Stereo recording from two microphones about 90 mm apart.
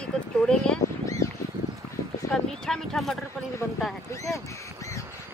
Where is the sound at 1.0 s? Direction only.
35° left (ahead or behind).